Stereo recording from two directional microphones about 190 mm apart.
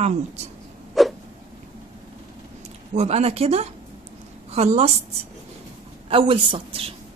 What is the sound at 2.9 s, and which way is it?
A woman's voice, 35° right (ahead or behind).